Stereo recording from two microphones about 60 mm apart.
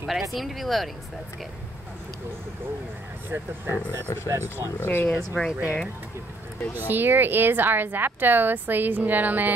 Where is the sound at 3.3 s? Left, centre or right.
Right.